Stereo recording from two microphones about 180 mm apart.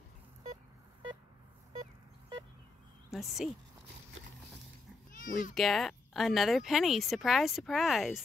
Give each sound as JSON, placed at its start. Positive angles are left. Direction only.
{"t": 3.1, "sound": "speech", "side_deg": 0}
{"t": 5.1, "sound": "cat", "side_deg": 50}
{"t": 5.5, "sound": "speech", "side_deg": 0}